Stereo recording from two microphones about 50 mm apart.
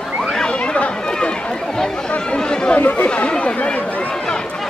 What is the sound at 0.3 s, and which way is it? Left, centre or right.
Chatter, centre.